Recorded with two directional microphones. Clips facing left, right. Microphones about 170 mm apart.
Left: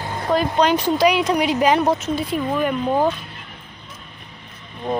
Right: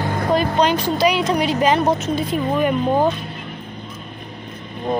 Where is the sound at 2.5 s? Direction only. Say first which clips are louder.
Right 3 dB; 10° right (ahead or behind).